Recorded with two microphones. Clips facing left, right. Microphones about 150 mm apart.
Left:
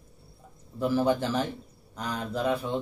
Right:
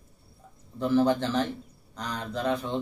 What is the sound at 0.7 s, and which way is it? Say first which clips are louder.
A man's voice: right 2 dB; 5° left (ahead or behind).